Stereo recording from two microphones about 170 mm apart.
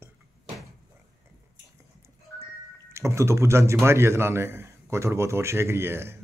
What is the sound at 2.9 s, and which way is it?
A man's voice, 15° right (ahead or behind).